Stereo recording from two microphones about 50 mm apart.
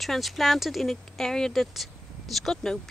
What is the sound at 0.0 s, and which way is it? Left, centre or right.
Speech, centre.